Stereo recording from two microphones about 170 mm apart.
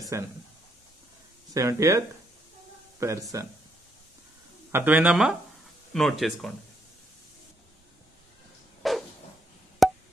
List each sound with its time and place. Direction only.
0.1 s speech: 15° right (ahead or behind)
1.5 s speech: 15° right (ahead or behind)
4.7 s speech: 10° right (ahead or behind)
8.8 s a sound: centre (ahead or behind)
9.8 s wood block: centre (ahead or behind)